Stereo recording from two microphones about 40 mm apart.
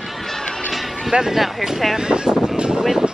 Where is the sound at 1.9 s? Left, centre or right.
Centre.